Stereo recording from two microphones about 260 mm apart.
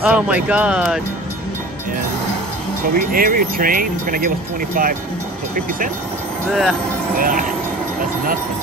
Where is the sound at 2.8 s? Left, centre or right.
Right.